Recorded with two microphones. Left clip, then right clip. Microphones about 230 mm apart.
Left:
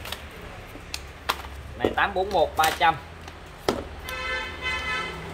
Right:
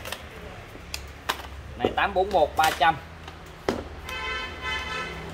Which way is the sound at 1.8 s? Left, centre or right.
Right.